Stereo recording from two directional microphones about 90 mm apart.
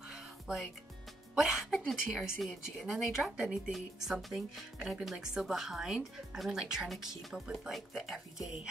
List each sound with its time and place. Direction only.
0.1 s music: 5° right (ahead or behind)
1.3 s a woman's voice: 5° right (ahead or behind)